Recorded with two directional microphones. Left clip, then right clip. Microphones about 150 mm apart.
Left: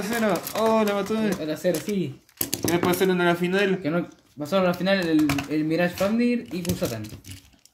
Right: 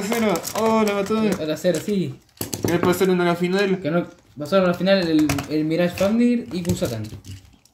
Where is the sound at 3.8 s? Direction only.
5° left (ahead or behind).